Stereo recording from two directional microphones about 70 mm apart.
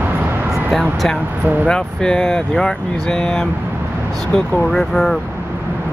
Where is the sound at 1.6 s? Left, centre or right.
Centre.